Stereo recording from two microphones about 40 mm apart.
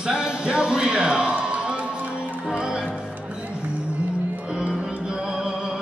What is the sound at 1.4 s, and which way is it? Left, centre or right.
Music, right.